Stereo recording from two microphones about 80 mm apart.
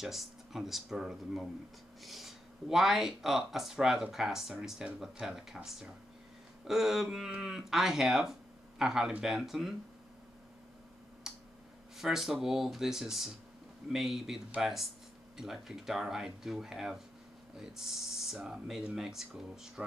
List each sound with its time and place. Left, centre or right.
0.0 s speech: centre
11.3 s clicking: centre
12.0 s speech: centre